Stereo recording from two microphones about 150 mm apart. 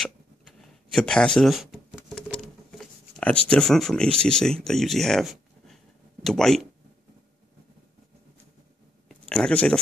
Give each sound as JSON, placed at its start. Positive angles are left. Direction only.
{"t": 0.6, "sound": "a sound", "side_deg": 5}
{"t": 6.2, "sound": "speech", "side_deg": 5}
{"t": 9.3, "sound": "speech", "side_deg": 5}